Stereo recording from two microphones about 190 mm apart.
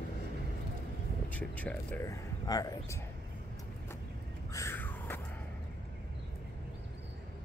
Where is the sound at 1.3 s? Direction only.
5° left (ahead or behind).